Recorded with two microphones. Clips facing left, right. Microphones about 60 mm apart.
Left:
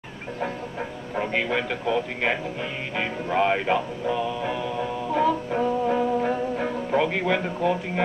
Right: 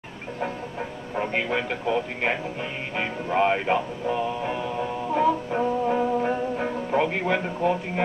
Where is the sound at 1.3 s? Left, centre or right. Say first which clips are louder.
Left 2 dB; centre.